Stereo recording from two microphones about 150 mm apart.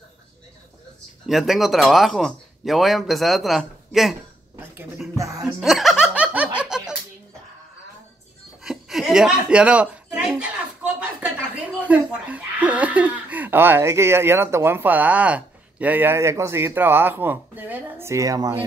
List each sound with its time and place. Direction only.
1.2 s speech: centre (ahead or behind)
4.6 s a sound: 10° right (ahead or behind)
5.1 s music: 20° right (ahead or behind)
5.6 s music: centre (ahead or behind)
8.6 s chuckle: centre (ahead or behind)
10.8 s speech: 10° right (ahead or behind)